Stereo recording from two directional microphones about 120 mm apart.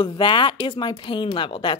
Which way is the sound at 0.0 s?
40° left (ahead or behind).